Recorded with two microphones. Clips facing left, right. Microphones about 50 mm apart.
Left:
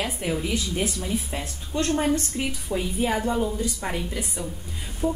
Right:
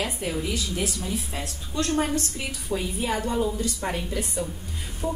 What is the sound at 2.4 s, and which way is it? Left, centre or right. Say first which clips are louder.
A woman's voice: left 2 dB; centre.